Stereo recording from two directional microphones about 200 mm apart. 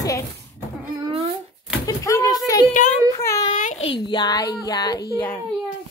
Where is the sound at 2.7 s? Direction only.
40° left (ahead or behind).